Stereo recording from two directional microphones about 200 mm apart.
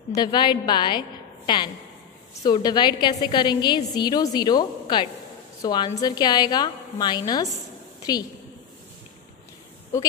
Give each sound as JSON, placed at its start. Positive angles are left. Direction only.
{"t": 0.1, "sound": "a woman's voice", "side_deg": 20}